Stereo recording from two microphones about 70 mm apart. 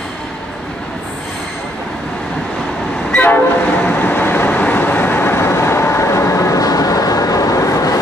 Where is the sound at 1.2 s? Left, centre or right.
Centre.